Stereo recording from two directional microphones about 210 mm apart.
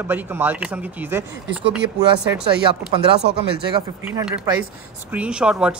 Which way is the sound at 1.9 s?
20° right (ahead or behind).